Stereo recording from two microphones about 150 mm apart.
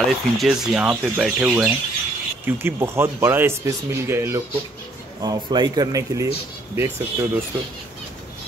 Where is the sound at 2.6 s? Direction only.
15° right (ahead or behind).